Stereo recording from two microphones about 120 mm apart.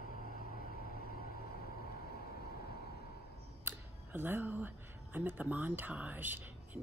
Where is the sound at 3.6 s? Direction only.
15° right (ahead or behind).